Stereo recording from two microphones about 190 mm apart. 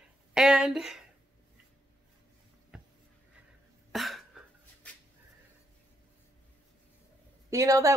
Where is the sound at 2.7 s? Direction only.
5° right (ahead or behind).